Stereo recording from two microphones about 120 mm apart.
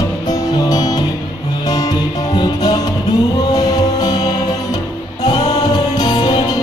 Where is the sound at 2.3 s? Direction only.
35° left (ahead or behind).